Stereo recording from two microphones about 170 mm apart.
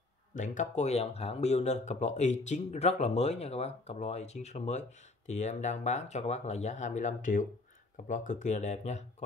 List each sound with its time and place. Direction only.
0.3 s speech: 45° left (ahead or behind)